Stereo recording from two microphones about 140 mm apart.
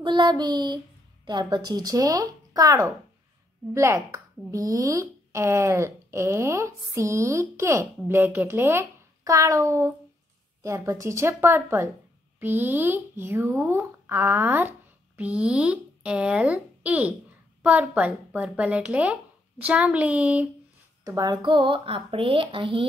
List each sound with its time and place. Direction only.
0.0 s speech: 30° right (ahead or behind); by 20.4 s 10° right (ahead or behind)
21.0 s speech: 25° right (ahead or behind)